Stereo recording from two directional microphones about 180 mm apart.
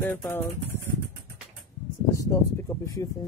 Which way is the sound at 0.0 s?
10° left (ahead or behind).